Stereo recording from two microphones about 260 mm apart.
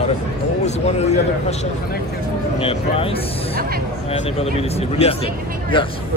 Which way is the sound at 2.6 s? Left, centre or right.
Left.